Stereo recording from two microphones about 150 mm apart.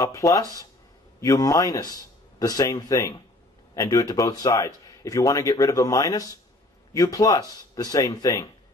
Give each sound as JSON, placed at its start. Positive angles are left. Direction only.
{"t": 0.0, "sound": "a man's voice", "side_deg": 20}